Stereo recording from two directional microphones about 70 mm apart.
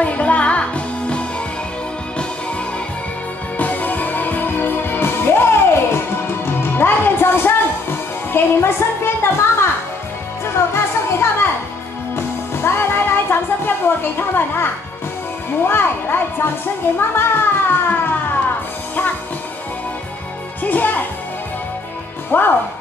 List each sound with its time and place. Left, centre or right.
0.0 s music: centre
3.5 s music: left
8.3 s a child's voice: left
10.5 s music: left
12.6 s a woman's voice: left
20.6 s a child's voice: left
22.3 s a child's voice: left